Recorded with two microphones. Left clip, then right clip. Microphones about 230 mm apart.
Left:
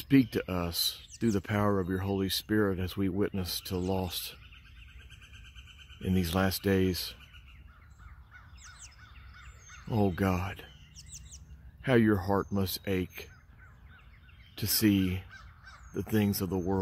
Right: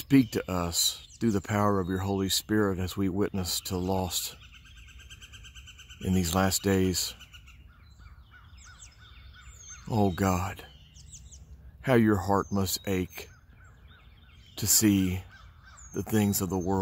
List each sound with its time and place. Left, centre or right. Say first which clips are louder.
0.1 s speech: right 2 dB; centre
6.0 s speech: right 3 dB; centre
9.8 s speech: right 3 dB; centre
11.0 s chirp: left 5 dB; left
11.8 s speech: right 2 dB; centre
14.5 s speech: right 3 dB; centre
15.3 s crow: left 2 dB; left
15.9 s speech: right 2 dB; centre